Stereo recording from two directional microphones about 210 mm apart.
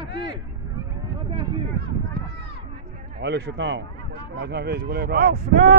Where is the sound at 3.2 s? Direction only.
55° right (ahead or behind).